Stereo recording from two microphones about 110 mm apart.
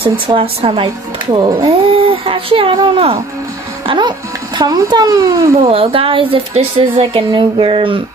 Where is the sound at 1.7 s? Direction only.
55° right (ahead or behind).